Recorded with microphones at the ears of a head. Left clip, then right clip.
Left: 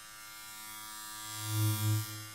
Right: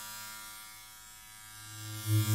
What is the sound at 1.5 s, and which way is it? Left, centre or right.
Electric shaver, left.